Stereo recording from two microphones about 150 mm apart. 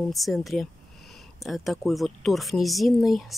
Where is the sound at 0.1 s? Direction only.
Centre (ahead or behind).